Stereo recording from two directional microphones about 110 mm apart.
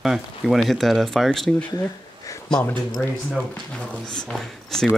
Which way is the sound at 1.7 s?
35° left (ahead or behind).